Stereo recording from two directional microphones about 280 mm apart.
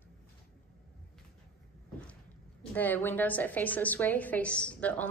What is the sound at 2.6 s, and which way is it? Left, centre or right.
A woman's voice, centre.